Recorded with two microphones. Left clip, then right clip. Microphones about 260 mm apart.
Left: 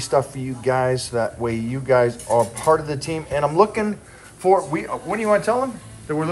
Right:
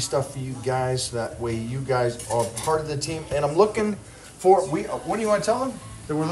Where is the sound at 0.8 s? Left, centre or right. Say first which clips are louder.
Left 5 dB; centre.